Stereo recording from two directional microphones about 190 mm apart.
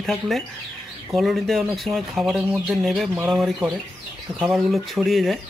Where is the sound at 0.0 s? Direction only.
Centre (ahead or behind).